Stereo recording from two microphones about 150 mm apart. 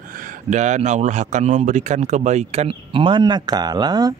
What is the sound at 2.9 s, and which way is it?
Speech, 35° right (ahead or behind).